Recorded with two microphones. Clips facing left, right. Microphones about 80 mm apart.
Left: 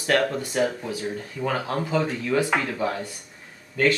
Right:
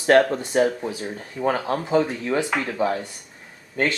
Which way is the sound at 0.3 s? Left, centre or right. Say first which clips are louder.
Right 4 dB; right.